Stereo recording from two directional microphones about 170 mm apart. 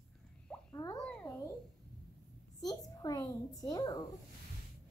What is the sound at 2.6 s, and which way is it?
A child's voice, 20° left (ahead or behind).